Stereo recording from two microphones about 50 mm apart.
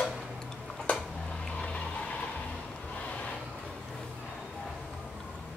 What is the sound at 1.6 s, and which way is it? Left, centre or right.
Music, left.